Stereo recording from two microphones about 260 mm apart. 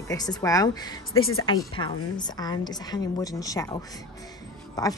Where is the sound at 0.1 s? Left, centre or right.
Centre.